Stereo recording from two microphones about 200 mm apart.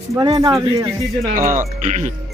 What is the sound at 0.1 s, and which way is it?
Speech, 20° right (ahead or behind).